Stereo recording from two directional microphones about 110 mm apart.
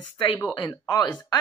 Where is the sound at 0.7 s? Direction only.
35° left (ahead or behind).